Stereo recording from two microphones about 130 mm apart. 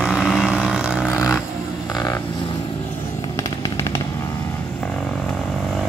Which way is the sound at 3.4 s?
25° left (ahead or behind).